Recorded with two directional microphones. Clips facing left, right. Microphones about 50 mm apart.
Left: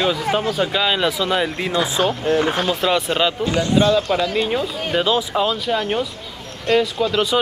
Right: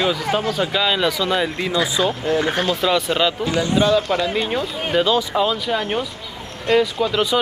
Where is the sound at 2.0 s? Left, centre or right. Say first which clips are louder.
Left 3 dB; left.